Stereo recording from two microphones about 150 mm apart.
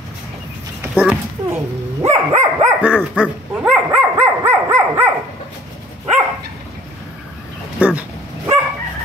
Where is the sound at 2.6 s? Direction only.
10° right (ahead or behind).